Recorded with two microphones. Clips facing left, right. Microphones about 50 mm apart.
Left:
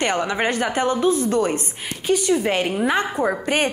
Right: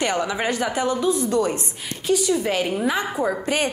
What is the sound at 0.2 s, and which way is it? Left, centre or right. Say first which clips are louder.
A woman's voice: left 2 dB; left.